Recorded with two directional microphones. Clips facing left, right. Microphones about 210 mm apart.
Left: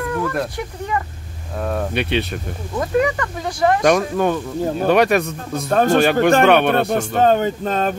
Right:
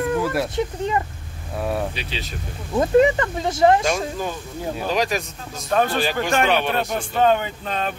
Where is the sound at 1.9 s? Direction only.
60° left (ahead or behind).